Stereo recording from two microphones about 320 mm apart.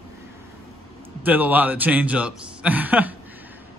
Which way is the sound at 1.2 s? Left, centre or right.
Centre.